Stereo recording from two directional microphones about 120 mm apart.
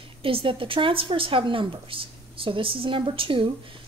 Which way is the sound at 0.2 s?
50° right (ahead or behind).